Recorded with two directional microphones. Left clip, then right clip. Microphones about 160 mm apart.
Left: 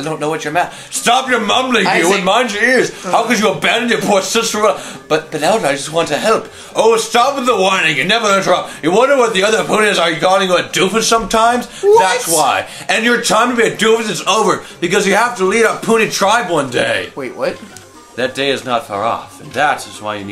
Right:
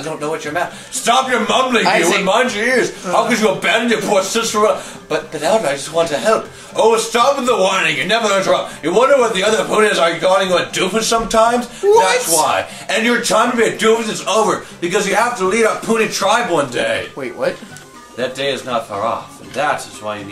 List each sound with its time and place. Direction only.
0.6 s a man's voice: 45° right (ahead or behind)
1.8 s speech: 5° right (ahead or behind)
2.2 s a man's voice: 45° right (ahead or behind)
11.9 s speech: 5° right (ahead or behind)
12.8 s a man's voice: 40° right (ahead or behind)
18.1 s a man's voice: 45° right (ahead or behind)